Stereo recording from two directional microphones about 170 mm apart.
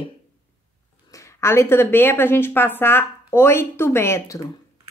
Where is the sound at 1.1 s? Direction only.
15° left (ahead or behind).